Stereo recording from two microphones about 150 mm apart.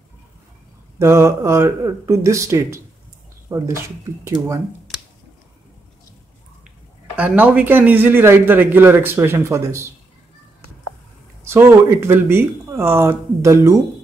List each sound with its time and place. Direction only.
0.9 s speech: 20° right (ahead or behind)
7.2 s a man's voice: 10° right (ahead or behind)
11.4 s a man's voice: 15° right (ahead or behind)